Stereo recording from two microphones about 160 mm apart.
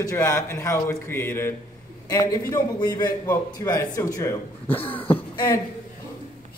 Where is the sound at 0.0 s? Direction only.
15° left (ahead or behind).